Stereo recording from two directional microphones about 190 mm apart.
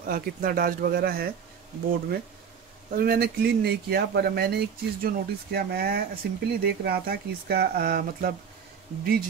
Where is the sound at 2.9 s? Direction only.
55° right (ahead or behind).